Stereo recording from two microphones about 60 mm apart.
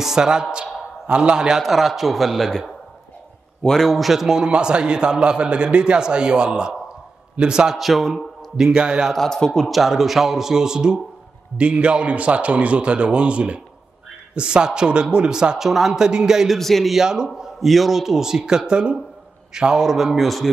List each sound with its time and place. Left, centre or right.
0.0 s a man's voice: centre
1.6 s a man's voice: centre
7.7 s a man's voice: centre
8.5 s a man's voice: centre
9.1 s a man's voice: centre
16.5 s a man's voice: centre